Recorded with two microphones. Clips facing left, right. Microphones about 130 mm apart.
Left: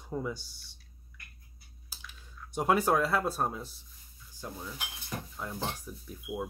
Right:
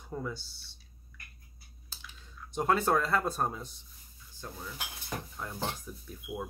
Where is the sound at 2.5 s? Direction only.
10° left (ahead or behind).